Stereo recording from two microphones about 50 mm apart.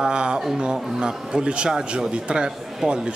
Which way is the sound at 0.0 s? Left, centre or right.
Centre.